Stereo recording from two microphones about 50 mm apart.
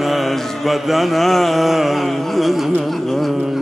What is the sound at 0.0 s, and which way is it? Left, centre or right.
Mantra, centre.